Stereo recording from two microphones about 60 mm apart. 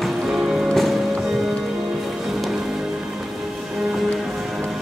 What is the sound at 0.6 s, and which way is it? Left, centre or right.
Music, centre.